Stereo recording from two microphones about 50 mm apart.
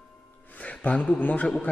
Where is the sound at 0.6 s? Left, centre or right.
Left.